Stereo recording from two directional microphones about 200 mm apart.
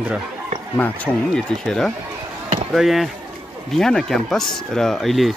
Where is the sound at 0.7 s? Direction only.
10° left (ahead or behind).